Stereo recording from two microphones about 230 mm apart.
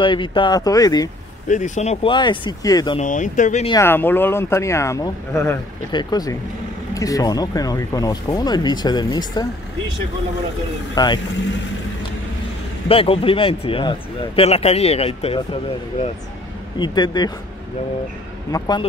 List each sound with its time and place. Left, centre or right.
0.0 s speech: left
1.5 s speech: left
3.0 s speech: left
3.7 s speech: centre
11.0 s speech: centre
12.8 s speech: left
16.7 s speech: centre
18.5 s speech: centre